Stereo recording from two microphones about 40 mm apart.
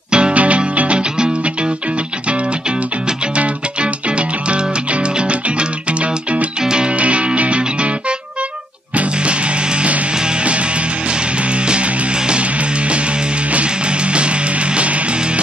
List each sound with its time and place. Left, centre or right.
0.1 s music: right
6.6 s music: centre
7.0 s music: right
8.9 s music: right
11.6 s music: right